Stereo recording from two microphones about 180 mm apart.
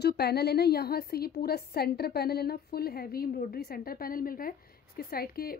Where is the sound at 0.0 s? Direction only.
65° left (ahead or behind).